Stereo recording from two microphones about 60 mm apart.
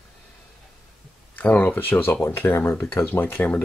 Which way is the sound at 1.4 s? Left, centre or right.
Left.